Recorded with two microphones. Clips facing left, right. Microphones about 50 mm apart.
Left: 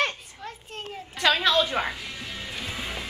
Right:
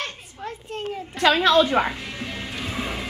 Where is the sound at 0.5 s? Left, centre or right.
Centre.